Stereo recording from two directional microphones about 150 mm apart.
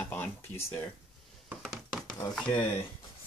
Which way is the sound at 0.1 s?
15° left (ahead or behind).